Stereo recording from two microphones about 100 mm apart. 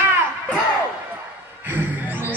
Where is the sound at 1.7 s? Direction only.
20° right (ahead or behind).